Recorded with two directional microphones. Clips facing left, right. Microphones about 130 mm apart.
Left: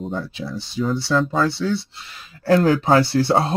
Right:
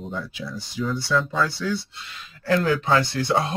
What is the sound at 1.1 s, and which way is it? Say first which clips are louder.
Speech: left 4 dB; 40° left (ahead or behind).